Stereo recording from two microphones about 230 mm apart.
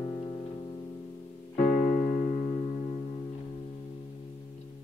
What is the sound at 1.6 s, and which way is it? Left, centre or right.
Keyboard, left.